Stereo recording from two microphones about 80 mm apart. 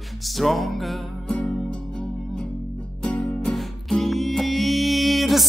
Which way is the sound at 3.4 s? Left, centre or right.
Centre.